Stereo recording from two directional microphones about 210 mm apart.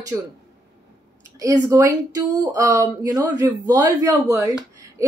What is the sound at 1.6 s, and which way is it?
Speech, 10° right (ahead or behind).